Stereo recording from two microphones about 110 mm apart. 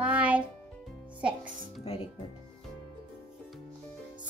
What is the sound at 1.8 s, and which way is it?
Music, 65° left (ahead or behind).